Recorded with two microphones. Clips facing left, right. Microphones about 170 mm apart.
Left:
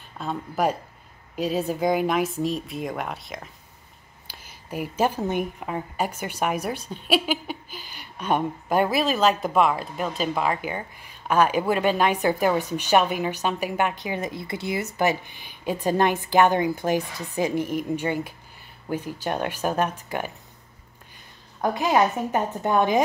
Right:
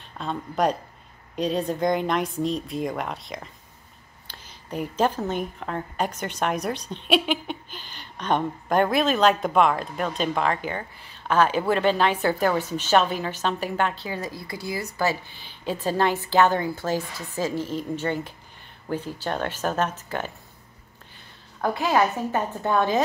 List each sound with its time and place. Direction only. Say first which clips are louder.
0.2 s a woman's voice: even; 5° left (ahead or behind)
21.5 s a woman's voice: left 1 dB; 15° left (ahead or behind)